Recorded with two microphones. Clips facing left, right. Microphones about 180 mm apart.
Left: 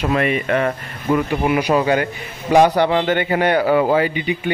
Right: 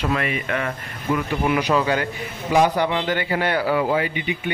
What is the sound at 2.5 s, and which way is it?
Speech, 70° left (ahead or behind).